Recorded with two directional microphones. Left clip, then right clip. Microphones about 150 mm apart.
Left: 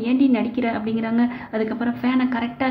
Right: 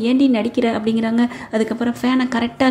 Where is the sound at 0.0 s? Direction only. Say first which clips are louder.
Right 3 dB; 40° right (ahead or behind).